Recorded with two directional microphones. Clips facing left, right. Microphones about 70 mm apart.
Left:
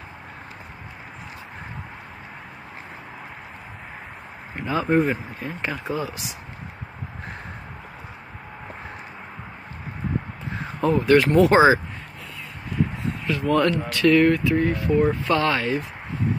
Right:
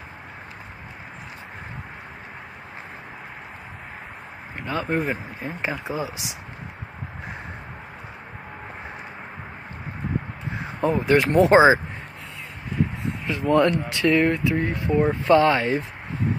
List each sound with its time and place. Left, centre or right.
4.6 s speech: centre
5.5 s speech: centre
10.6 s speech: centre
13.3 s speech: right